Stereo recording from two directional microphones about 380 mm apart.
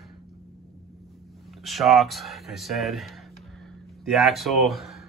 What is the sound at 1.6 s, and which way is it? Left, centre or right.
Speech, centre.